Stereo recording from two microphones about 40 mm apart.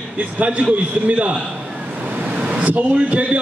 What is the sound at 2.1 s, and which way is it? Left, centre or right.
Vehicle, right.